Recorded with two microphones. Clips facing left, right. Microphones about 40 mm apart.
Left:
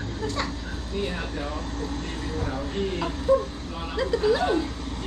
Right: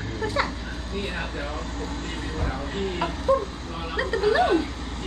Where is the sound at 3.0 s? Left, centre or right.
Centre.